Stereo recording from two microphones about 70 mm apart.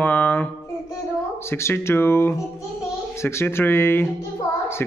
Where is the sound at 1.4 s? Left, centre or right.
Left.